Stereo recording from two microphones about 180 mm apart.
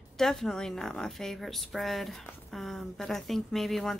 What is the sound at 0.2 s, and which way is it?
Speech, 5° left (ahead or behind).